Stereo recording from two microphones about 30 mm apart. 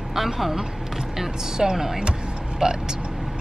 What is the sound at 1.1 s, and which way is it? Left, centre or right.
Speech, centre.